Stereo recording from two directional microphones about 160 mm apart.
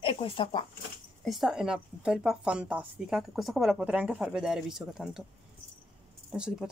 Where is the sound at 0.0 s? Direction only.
35° left (ahead or behind).